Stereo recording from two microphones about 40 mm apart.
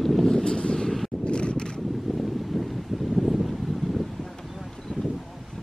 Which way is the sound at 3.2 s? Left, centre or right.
Centre.